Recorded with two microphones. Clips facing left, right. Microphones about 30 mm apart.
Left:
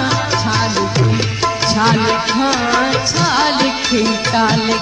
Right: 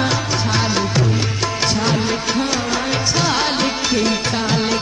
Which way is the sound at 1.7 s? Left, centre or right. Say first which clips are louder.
Left 8 dB; left.